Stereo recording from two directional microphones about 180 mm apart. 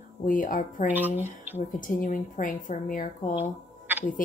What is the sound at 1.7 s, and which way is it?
A woman's voice, 50° left (ahead or behind).